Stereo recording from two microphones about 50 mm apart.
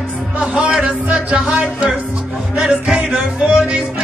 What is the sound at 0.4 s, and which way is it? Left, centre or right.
Music, right.